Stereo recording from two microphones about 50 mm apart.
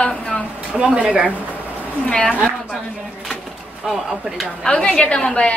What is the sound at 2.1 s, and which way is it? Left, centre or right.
Speech, left.